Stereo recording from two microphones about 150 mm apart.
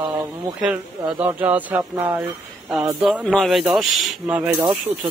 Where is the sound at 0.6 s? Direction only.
10° right (ahead or behind).